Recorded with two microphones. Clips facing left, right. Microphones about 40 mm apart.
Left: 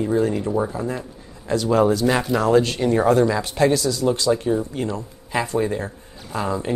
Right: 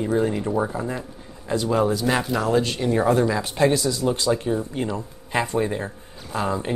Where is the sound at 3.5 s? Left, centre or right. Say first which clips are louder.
Left 1 dB; right.